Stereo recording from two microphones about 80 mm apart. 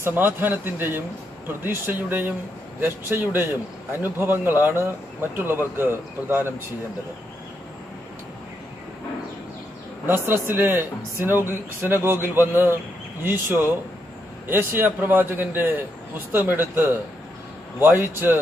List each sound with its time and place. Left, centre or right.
0.0 s speech: right
10.0 s speech: right